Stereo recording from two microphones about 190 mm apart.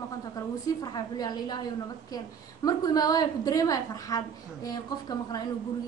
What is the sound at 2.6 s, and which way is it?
A woman's voice, 20° left (ahead or behind).